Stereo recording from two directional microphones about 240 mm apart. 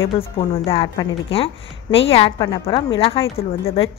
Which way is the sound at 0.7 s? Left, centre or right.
Left.